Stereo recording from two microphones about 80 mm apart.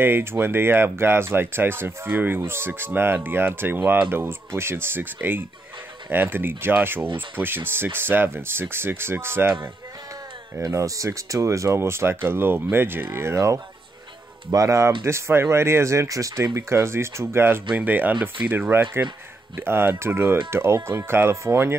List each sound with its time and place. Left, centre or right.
0.0 s speech: right
10.6 s speech: right
17.7 s speech: right